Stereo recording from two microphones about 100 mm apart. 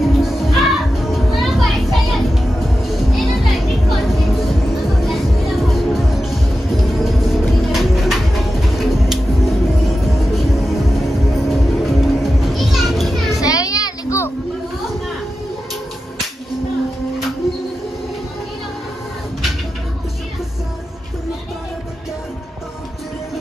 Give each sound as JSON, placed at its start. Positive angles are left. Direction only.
{"t": 0.0, "sound": "music", "side_deg": 0}
{"t": 13.4, "sound": "music", "side_deg": 35}